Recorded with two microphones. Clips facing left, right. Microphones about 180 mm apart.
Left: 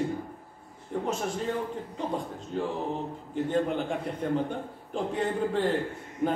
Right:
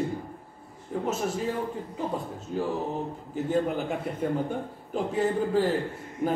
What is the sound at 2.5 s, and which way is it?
A man's voice, 5° right (ahead or behind).